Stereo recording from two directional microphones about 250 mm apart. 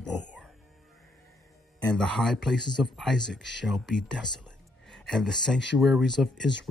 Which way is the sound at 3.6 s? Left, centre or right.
Centre.